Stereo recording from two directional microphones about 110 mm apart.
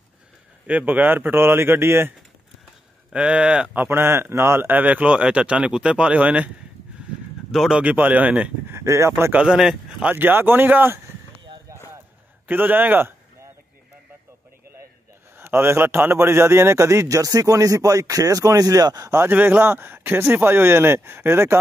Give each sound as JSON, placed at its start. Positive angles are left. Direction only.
{"t": 0.7, "sound": "a man's voice", "side_deg": -15}
{"t": 3.1, "sound": "a man's voice", "side_deg": -10}
{"t": 7.5, "sound": "speech", "side_deg": 0}
{"t": 7.8, "sound": "a man's voice", "side_deg": -15}
{"t": 8.7, "sound": "speech", "side_deg": -25}
{"t": 9.3, "sound": "a man's voice", "side_deg": -10}
{"t": 10.1, "sound": "a man's voice", "side_deg": -20}
{"t": 12.4, "sound": "a man's voice", "side_deg": -15}
{"t": 15.3, "sound": "a man's voice", "side_deg": -20}
{"t": 19.2, "sound": "a man's voice", "side_deg": -15}